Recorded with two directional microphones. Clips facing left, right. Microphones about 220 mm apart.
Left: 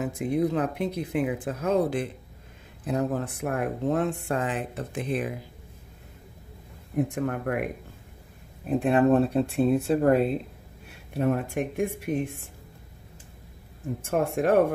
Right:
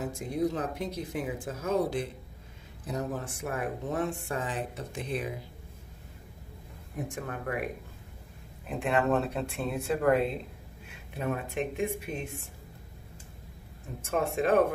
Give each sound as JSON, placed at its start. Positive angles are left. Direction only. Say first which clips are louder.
{"t": 0.0, "sound": "speech", "louder": "left 5 dB", "side_deg": 65}
{"t": 2.9, "sound": "speech", "louder": "left 7 dB", "side_deg": 60}
{"t": 7.0, "sound": "speech", "louder": "left 10 dB", "side_deg": 60}
{"t": 8.6, "sound": "speech", "louder": "left 7 dB", "side_deg": 35}
{"t": 11.1, "sound": "speech", "louder": "left 6 dB", "side_deg": 50}
{"t": 14.1, "sound": "speech", "louder": "left 3 dB", "side_deg": 55}